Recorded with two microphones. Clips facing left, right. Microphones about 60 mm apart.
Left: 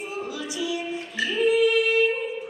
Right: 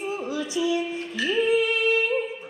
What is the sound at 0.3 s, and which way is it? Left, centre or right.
Music, right.